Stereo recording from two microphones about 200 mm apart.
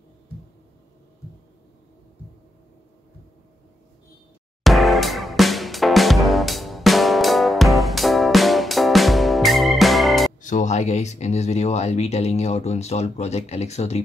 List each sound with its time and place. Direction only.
4.6 s music: centre (ahead or behind)
10.4 s speech: 35° left (ahead or behind)